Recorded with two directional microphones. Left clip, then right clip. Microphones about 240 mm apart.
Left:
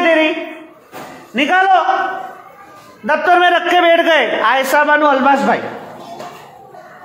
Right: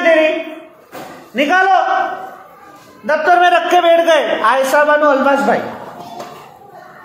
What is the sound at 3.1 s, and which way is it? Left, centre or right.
A man's voice, left.